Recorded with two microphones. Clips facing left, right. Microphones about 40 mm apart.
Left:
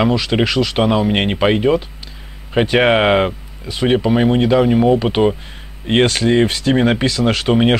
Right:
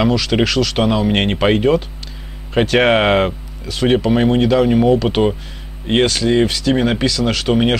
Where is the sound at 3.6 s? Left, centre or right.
Centre.